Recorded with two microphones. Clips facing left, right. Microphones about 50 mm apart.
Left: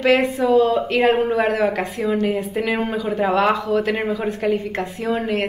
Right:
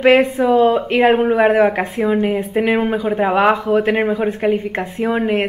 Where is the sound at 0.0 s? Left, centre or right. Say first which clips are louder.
Right 5 dB; right.